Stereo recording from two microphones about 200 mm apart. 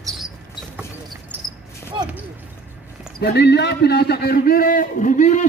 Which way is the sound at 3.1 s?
55° left (ahead or behind).